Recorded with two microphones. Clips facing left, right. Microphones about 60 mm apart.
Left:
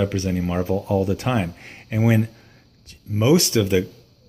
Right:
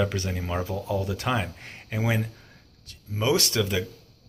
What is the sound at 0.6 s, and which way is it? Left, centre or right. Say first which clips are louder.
Speech: left 7 dB; left.